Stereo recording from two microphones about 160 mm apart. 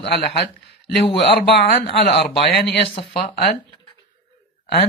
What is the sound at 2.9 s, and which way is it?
Speech, 35° left (ahead or behind).